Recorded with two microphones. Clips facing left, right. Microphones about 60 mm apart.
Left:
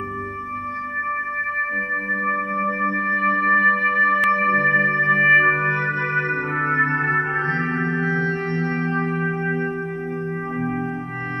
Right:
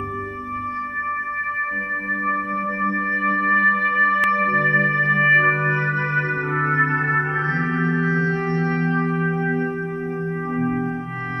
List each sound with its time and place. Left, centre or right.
3.2 s music: centre
6.6 s music: centre
7.5 s music: left